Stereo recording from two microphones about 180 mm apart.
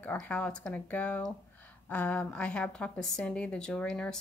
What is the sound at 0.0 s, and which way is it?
A woman's voice, 10° left (ahead or behind).